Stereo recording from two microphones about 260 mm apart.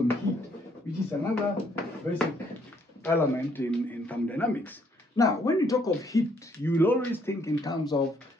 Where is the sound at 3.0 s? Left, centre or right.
Centre.